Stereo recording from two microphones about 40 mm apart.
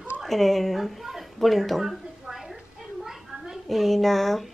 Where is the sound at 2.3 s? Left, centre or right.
Centre.